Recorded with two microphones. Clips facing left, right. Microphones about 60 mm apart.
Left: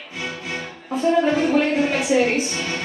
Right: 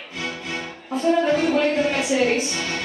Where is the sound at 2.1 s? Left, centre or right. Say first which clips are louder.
Left 2 dB; left.